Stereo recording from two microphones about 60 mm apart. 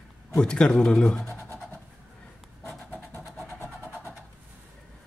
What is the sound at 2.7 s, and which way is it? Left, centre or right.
Vehicle, left.